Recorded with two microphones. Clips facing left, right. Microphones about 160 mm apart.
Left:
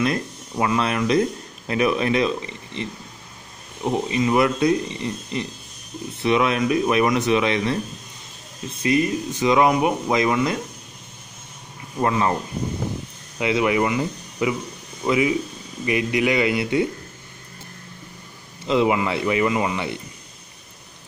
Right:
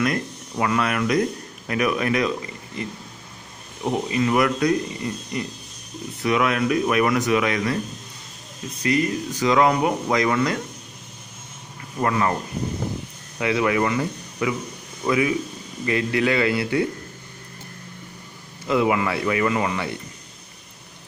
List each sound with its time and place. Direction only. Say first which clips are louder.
0.0 s speech: left 1 dB; 25° left (ahead or behind)
3.9 s speech: left 1 dB; 20° left (ahead or behind)
12.0 s speech: left 1 dB; 20° left (ahead or behind)
13.4 s speech: left 1 dB; 20° left (ahead or behind)
18.7 s speech: left 1 dB; 20° left (ahead or behind)